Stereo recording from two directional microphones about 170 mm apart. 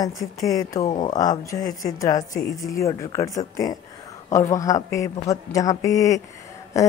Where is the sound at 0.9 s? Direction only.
20° left (ahead or behind).